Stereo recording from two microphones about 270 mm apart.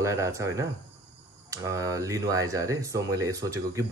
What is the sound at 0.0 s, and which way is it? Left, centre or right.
Speech, centre.